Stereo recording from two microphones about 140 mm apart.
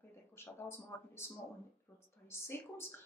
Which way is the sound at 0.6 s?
15° left (ahead or behind).